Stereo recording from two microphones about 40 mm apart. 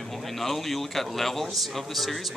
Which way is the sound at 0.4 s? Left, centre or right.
Centre.